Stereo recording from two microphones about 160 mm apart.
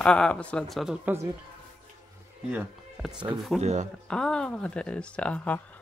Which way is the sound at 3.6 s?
45° right (ahead or behind).